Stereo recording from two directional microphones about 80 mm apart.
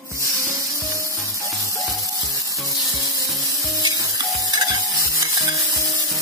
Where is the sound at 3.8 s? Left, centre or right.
Right.